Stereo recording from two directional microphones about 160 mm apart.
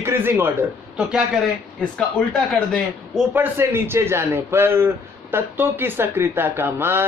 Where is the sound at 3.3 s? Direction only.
15° right (ahead or behind).